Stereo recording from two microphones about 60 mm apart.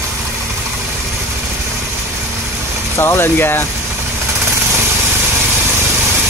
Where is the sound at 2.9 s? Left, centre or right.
Left.